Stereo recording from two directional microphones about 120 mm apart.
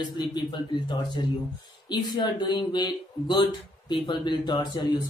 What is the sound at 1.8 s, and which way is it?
Speech, 40° left (ahead or behind).